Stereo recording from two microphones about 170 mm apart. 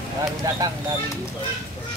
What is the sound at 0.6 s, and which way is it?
Speech, 20° right (ahead or behind).